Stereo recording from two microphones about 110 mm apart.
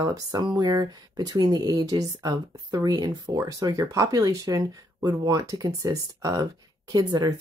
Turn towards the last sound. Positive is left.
turn(degrees=-35)  # may be behind; listen again after turning